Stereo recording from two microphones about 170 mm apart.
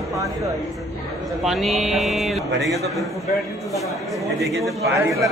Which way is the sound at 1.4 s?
Centre (ahead or behind).